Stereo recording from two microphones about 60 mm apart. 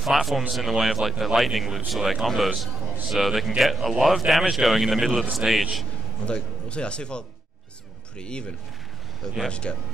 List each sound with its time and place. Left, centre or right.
0.0 s a man's voice: centre
6.2 s speech: centre